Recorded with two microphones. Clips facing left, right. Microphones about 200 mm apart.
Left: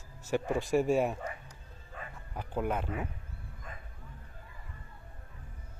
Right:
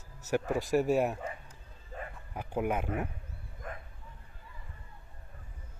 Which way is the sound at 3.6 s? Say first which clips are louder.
Right 7 dB; 60° right (ahead or behind).